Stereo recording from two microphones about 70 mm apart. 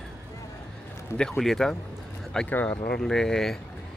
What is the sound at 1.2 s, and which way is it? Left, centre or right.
Speech, centre.